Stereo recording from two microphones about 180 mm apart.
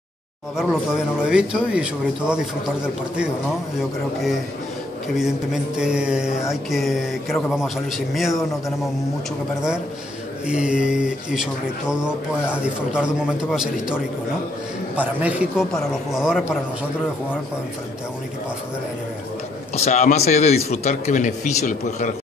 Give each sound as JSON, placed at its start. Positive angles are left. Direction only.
{"t": 0.6, "sound": "a man's voice", "side_deg": -5}
{"t": 5.1, "sound": "a man's voice", "side_deg": -5}
{"t": 8.3, "sound": "speech", "side_deg": 15}
{"t": 10.4, "sound": "a man's voice", "side_deg": -5}
{"t": 19.7, "sound": "a man's voice", "side_deg": 40}